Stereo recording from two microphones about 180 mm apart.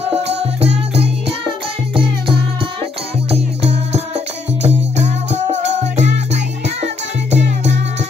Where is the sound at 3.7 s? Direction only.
35° right (ahead or behind).